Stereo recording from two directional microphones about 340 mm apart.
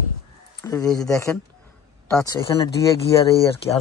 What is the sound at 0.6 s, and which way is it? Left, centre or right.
Speech, centre.